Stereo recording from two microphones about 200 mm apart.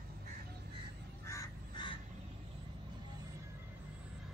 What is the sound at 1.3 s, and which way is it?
Crow, 20° left (ahead or behind).